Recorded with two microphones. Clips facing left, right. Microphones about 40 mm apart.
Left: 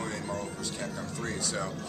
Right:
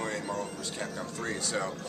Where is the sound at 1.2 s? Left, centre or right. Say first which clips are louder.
Right 2 dB; centre.